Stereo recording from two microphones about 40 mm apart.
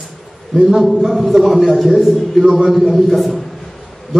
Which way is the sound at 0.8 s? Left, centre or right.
Centre.